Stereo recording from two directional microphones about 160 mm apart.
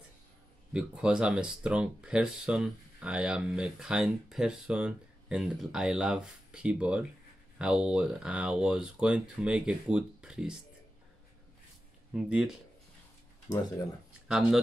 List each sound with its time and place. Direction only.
0.7 s speech: 5° right (ahead or behind)
12.1 s speech: 5° right (ahead or behind)
14.2 s speech: 5° right (ahead or behind)